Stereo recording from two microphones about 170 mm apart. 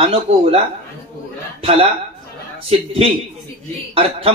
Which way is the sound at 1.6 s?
35° right (ahead or behind).